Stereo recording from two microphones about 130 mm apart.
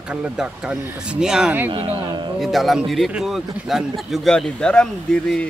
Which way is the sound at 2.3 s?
Centre (ahead or behind).